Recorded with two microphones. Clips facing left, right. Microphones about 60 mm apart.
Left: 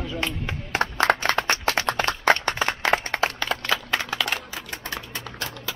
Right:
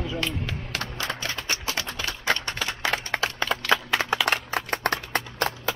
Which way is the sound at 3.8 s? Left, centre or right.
Centre.